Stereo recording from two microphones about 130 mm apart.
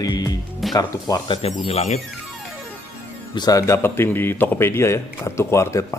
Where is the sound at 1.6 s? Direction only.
55° left (ahead or behind).